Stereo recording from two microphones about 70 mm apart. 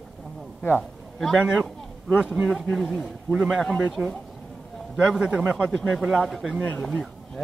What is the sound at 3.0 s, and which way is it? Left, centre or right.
Speech, centre.